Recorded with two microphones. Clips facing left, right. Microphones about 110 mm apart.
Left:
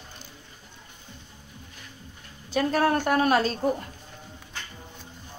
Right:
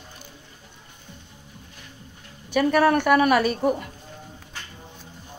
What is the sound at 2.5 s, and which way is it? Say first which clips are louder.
A woman's voice: right 4 dB; 70° right (ahead or behind).